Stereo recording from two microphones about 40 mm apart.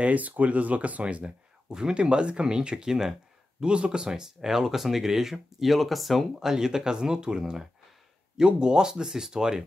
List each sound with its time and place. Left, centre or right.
0.0 s speech: right
1.7 s speech: centre
2.0 s speech: right
3.6 s speech: right; by 6.2 s centre
6.4 s speech: centre